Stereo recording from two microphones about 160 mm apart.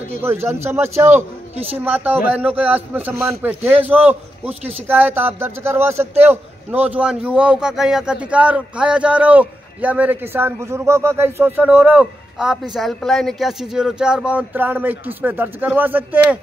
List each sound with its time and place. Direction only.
0.2 s a man's voice: 15° right (ahead or behind)
4.5 s speech: 40° right (ahead or behind)
4.8 s a man's voice: 10° right (ahead or behind)